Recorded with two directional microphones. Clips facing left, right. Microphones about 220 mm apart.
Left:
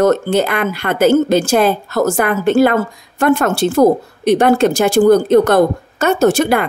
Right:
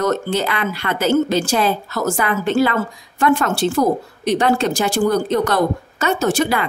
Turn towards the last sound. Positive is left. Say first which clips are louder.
# left 6 dB
turn(degrees=50)  # may be behind; listen again after turning